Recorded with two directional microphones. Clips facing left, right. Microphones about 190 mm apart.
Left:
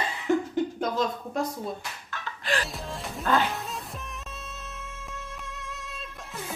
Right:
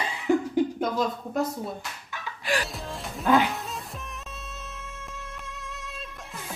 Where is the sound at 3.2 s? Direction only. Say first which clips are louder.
Right 4 dB; 15° right (ahead or behind).